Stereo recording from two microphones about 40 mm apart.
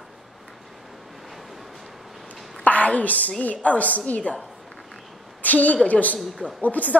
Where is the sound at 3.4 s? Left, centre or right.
Left.